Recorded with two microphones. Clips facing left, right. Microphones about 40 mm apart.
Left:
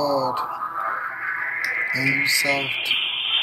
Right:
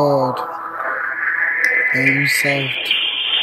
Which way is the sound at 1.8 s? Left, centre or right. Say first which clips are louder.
Right 6 dB; right.